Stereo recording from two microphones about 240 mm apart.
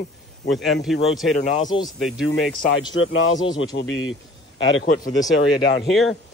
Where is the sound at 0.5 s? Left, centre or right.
Centre.